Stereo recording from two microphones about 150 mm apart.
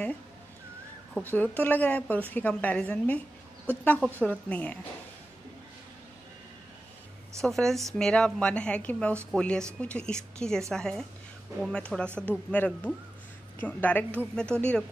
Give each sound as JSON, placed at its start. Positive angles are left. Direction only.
{"t": 1.2, "sound": "a woman's voice", "side_deg": 10}
{"t": 7.4, "sound": "a woman's voice", "side_deg": 0}